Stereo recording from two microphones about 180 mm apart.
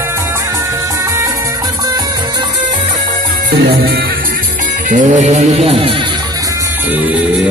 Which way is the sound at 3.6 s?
60° right (ahead or behind).